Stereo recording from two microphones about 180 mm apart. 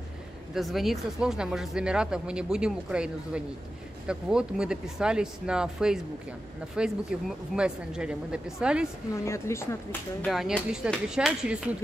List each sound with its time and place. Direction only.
0.6 s speech: centre (ahead or behind)
9.1 s speech: 15° left (ahead or behind)
10.2 s speech: centre (ahead or behind)